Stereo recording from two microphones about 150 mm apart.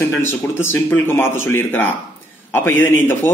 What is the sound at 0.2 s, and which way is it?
Speech, 15° left (ahead or behind).